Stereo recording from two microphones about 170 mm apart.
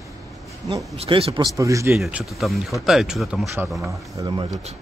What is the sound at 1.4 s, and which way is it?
Speech, 20° right (ahead or behind).